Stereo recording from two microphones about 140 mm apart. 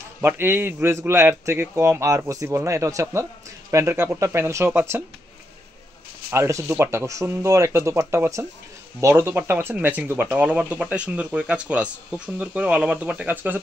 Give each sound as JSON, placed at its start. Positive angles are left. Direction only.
{"t": 0.2, "sound": "a man's voice", "side_deg": -15}
{"t": 6.3, "sound": "a man's voice", "side_deg": -20}